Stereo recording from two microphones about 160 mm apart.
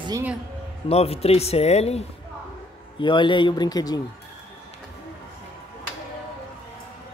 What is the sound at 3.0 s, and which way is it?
Speech, 30° left (ahead or behind).